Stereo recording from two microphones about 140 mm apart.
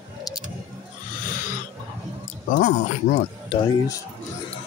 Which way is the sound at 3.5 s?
25° left (ahead or behind).